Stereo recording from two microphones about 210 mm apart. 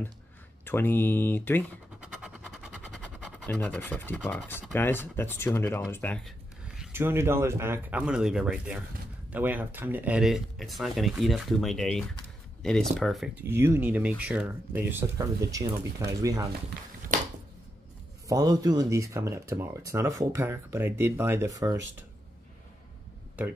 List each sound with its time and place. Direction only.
0.7 s speech: 10° left (ahead or behind)
2.0 s a sound: 5° right (ahead or behind)
4.7 s speech: 10° left (ahead or behind)
6.8 s speech: 10° right (ahead or behind)
17.1 s a sound: 35° right (ahead or behind)
18.3 s speech: 20° right (ahead or behind)